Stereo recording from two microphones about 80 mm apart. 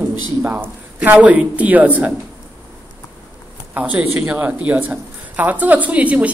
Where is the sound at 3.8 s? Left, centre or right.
Centre.